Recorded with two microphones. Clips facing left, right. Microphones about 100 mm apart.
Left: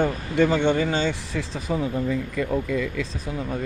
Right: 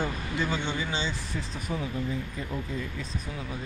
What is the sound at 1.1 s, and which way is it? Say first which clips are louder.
Speech: left 7 dB; 80° left.